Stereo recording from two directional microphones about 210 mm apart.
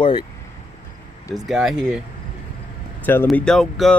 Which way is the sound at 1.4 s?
Centre (ahead or behind).